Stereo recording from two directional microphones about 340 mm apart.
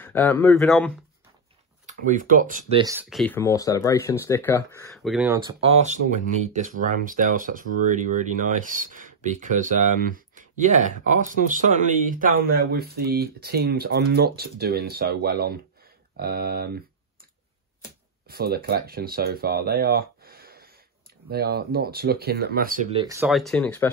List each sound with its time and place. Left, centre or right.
0.0 s speech: centre
1.9 s speech: right
2.8 s speech: centre; by 16.8 s right
18.2 s speech: right; by 23.9 s centre